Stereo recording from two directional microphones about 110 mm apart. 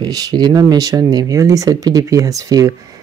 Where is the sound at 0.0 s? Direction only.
40° right (ahead or behind).